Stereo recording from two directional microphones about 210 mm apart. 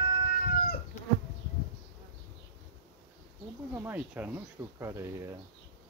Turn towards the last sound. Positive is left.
turn(degrees=-15)  # may be behind; listen again after turning